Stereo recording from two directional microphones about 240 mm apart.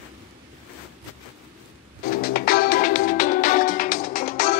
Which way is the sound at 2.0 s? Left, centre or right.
Left.